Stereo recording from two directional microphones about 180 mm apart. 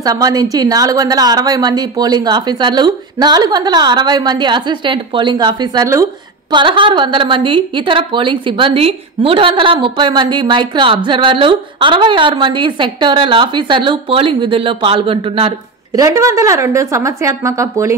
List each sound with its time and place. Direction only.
0.0 s a woman's voice: 20° right (ahead or behind)